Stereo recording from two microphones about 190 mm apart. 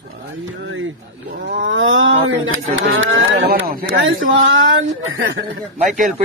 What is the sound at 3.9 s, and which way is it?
Speech, 90° right.